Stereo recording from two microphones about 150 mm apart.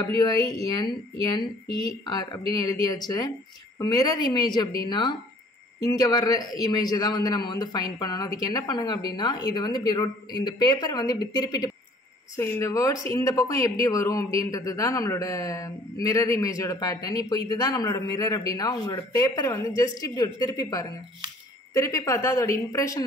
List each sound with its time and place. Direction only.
0.2 s speech: 25° left (ahead or behind)